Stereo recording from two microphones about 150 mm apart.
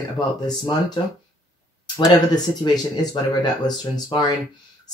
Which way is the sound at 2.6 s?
30° left (ahead or behind).